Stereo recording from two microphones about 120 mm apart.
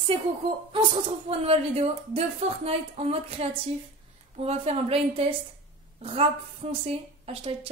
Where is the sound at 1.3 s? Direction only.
55° right (ahead or behind).